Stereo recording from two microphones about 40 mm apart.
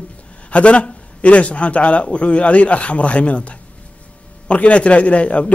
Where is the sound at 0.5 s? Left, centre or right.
Left.